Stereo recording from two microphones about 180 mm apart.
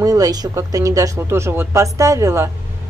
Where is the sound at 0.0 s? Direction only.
20° right (ahead or behind).